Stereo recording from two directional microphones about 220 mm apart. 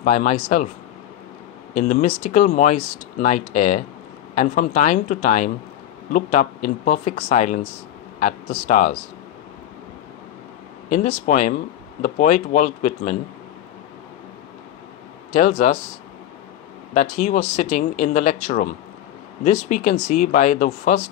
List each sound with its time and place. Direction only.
0.0 s speech: 35° left (ahead or behind)
1.7 s a man's voice: 35° left (ahead or behind)
10.9 s speech: 35° left (ahead or behind)
15.3 s speech: 40° left (ahead or behind)
16.9 s speech: 35° left (ahead or behind)